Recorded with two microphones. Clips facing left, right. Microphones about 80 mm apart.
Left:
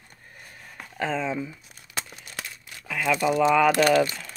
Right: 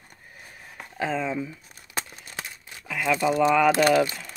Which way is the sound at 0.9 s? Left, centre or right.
Centre.